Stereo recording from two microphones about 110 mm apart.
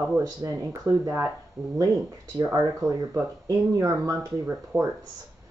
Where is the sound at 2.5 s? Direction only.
25° right (ahead or behind).